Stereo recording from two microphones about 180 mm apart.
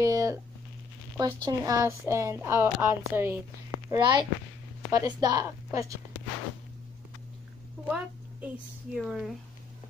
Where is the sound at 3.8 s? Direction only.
25° right (ahead or behind).